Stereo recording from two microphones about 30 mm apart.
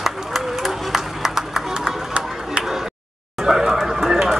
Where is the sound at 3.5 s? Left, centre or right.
Centre.